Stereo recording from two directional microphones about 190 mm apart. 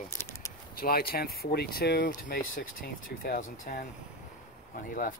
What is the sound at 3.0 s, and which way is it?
Speech, 50° left (ahead or behind).